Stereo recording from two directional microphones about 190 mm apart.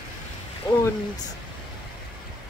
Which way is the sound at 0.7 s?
20° left (ahead or behind).